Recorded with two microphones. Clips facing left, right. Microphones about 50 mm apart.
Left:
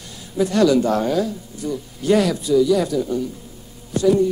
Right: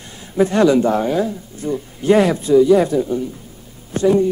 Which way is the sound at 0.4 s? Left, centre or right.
Right.